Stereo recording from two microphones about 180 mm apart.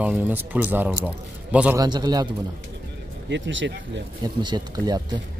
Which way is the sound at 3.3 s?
85° right.